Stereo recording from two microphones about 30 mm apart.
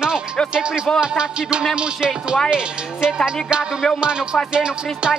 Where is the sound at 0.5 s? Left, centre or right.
Right.